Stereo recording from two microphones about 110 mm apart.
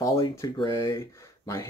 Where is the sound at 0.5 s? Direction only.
40° left (ahead or behind).